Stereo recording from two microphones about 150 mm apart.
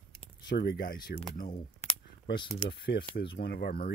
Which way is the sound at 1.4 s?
40° left (ahead or behind).